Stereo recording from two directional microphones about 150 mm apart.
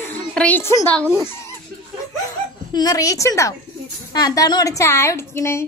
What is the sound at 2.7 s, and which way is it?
A woman's voice, 25° left (ahead or behind).